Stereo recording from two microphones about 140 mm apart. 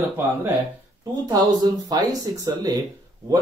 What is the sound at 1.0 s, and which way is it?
Speech, 30° right (ahead or behind).